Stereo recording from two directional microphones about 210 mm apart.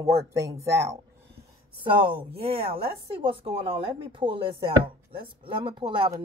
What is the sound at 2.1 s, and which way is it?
Speech, 25° right (ahead or behind).